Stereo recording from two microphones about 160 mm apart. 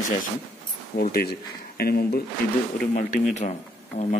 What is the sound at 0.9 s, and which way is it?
Speech, 65° left (ahead or behind).